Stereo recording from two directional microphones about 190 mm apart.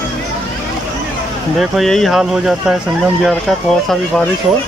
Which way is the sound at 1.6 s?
Centre (ahead or behind).